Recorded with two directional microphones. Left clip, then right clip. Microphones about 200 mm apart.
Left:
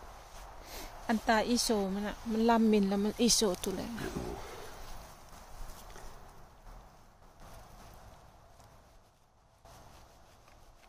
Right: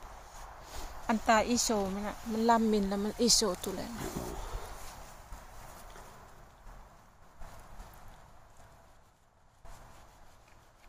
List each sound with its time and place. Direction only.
1.0 s speech: 15° left (ahead or behind)